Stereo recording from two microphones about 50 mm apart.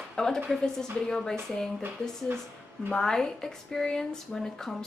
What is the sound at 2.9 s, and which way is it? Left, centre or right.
Speech, centre.